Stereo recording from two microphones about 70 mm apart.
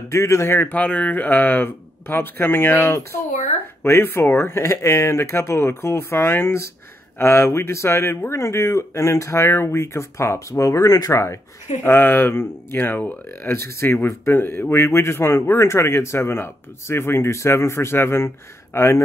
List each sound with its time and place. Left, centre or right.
0.1 s speech: left
0.7 s speech: centre; by 11.1 s left
11.8 s speech: left